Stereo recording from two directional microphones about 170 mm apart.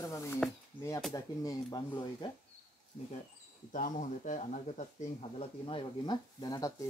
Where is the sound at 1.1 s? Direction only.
20° left (ahead or behind).